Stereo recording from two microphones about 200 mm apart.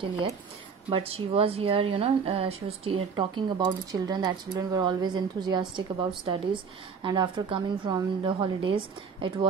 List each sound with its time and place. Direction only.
0.8 s speech: 30° right (ahead or behind)